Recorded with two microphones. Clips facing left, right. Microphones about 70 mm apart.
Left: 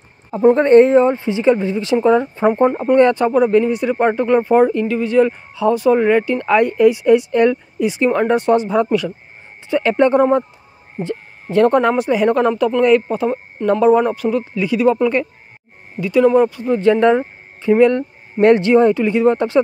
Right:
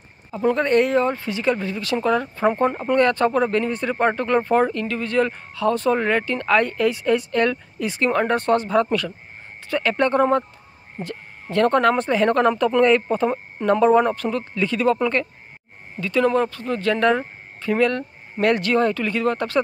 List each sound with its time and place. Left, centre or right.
0.4 s speech: left